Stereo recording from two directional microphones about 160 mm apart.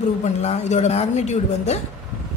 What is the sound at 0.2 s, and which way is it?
Speech, 45° left (ahead or behind).